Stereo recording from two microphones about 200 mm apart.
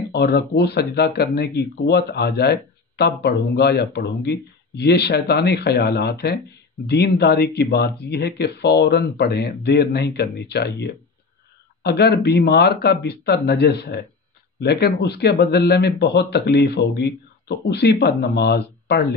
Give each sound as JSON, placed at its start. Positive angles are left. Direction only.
{"t": 0.1, "sound": "speech", "side_deg": 55}